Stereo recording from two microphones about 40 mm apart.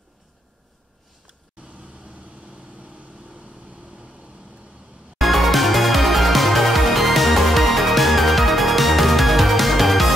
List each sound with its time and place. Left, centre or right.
1.6 s vehicle: right
5.2 s music: centre